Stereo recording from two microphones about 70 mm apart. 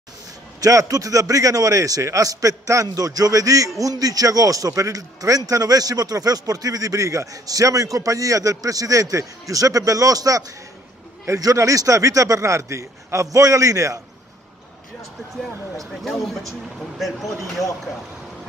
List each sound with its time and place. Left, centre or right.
0.6 s a man's voice: right
15.9 s speech: centre